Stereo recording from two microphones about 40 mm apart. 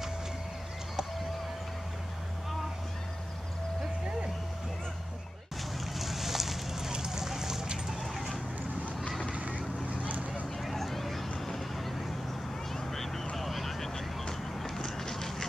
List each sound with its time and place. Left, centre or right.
5.9 s a sound: centre
8.0 s chicken: centre
9.5 s vehicle: left
10.0 s vehicle: right
10.6 s a sound: centre
11.3 s vehicle: centre
14.9 s duck: centre